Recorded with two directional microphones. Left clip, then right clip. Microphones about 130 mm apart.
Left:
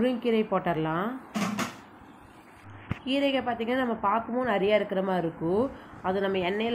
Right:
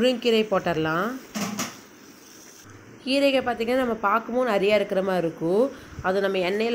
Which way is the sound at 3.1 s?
20° right (ahead or behind).